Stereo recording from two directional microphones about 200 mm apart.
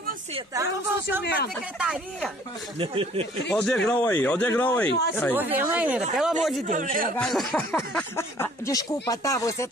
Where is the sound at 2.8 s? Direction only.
30° right (ahead or behind).